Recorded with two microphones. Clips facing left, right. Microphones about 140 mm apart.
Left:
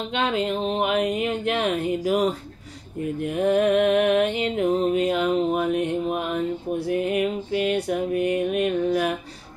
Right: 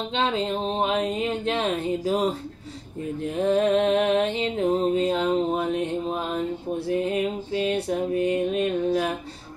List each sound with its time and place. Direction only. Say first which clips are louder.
0.1 s music: left 1 dB; 30° right (ahead or behind)